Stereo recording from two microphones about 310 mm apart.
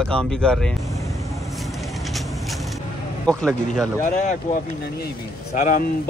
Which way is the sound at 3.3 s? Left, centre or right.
Centre.